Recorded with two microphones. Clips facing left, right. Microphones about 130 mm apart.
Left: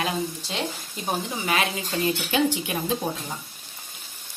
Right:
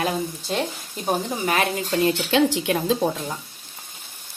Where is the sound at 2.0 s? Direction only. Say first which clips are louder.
Right 3 dB; 80° right.